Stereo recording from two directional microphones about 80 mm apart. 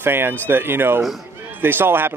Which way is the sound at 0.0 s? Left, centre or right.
Right.